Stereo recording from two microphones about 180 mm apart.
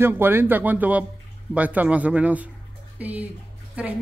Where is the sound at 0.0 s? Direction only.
10° right (ahead or behind).